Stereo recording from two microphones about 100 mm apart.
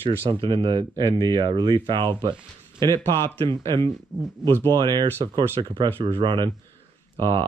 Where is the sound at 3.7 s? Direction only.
50° right (ahead or behind).